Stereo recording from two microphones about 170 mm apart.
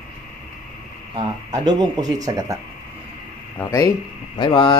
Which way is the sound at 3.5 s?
20° left (ahead or behind).